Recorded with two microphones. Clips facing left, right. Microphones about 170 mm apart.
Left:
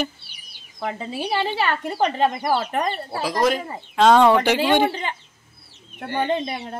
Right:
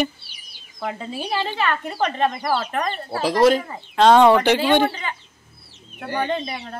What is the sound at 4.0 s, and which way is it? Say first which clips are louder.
Speech: right 1 dB; centre (ahead or behind).